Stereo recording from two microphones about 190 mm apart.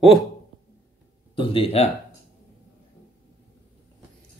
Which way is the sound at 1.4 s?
30° left (ahead or behind).